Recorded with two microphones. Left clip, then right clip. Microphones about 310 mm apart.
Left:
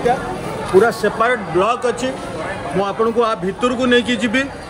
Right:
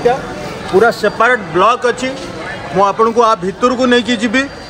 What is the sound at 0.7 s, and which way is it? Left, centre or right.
A man's voice, right.